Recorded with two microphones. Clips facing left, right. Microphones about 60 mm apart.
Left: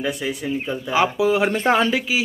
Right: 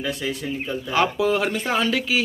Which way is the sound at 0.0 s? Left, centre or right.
Centre.